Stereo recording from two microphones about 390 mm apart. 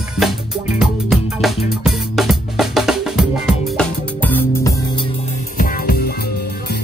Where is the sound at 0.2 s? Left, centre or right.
Centre.